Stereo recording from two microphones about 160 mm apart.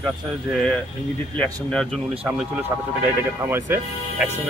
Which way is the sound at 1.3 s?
5° left (ahead or behind).